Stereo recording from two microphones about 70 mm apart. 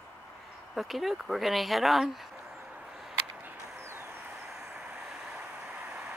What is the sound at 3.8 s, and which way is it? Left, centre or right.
Vehicle, right.